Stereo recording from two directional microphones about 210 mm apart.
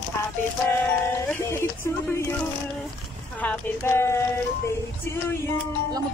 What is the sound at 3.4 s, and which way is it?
Speech, 10° left (ahead or behind).